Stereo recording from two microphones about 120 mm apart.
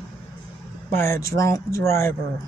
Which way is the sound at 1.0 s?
25° left (ahead or behind).